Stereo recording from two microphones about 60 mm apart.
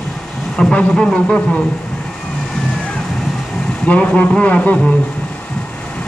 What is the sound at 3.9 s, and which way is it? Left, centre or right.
Speech, left.